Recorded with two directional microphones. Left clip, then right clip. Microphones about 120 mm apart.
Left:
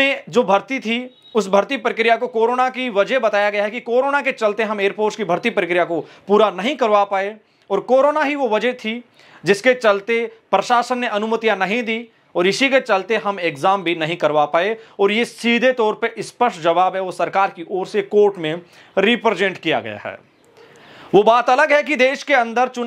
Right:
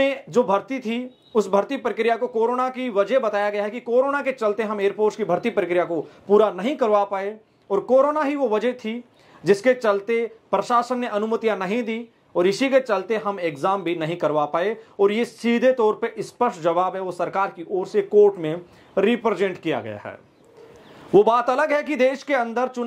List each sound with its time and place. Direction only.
0.0 s speech: 30° left (ahead or behind)